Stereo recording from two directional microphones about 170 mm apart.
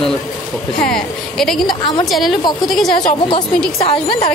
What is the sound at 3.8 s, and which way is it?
Speech, 30° left (ahead or behind).